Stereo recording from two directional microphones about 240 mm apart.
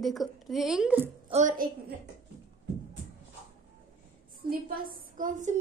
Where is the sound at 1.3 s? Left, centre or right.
Right.